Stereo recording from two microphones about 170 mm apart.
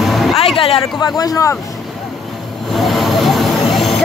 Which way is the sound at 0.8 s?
20° left (ahead or behind).